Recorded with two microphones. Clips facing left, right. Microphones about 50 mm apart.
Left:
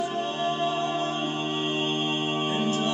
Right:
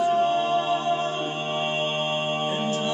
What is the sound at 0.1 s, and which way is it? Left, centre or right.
Music, centre.